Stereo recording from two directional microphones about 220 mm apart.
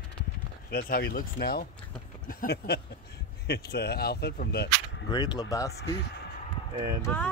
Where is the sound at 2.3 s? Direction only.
45° left (ahead or behind).